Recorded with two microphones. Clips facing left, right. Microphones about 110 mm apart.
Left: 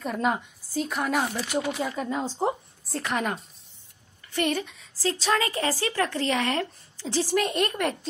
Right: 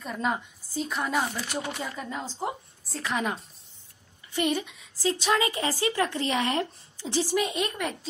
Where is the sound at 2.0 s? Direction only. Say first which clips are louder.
Left 6 dB; 15° left (ahead or behind).